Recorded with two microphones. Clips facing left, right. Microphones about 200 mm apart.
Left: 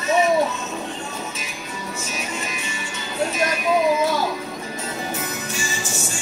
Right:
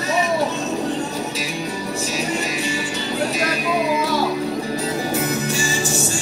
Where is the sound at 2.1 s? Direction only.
35° right (ahead or behind).